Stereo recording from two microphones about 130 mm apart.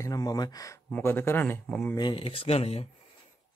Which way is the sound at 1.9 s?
40° left (ahead or behind).